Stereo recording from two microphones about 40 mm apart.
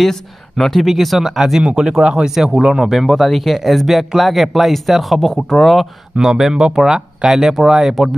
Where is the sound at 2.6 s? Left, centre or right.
Right.